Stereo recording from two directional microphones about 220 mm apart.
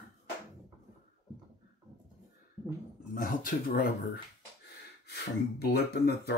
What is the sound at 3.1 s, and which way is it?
Speech, 40° left (ahead or behind).